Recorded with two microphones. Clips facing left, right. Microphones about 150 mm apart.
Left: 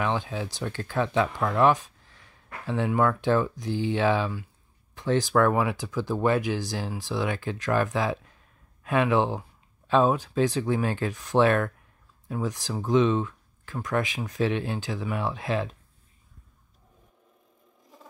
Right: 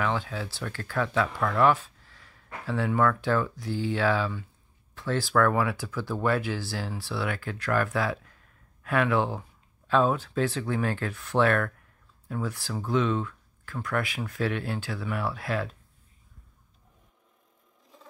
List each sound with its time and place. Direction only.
0.0 s speech: 20° left (ahead or behind)